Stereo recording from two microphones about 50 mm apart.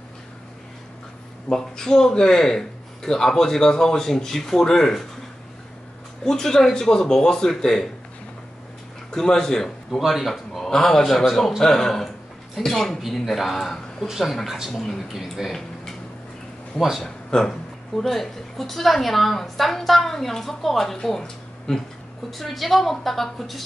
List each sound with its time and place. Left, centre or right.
1.5 s a man's voice: centre
6.2 s a man's voice: centre
9.1 s a man's voice: centre
9.9 s a woman's voice: centre
17.0 s a woman's voice: centre